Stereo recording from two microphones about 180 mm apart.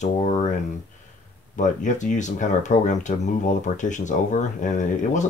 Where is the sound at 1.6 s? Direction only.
45° left (ahead or behind).